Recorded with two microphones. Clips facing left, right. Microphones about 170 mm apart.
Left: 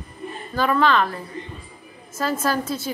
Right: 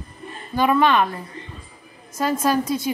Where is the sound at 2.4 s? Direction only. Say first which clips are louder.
Right 3 dB; 15° right (ahead or behind).